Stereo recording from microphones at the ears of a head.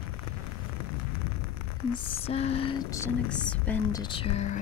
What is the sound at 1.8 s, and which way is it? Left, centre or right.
Speech, left.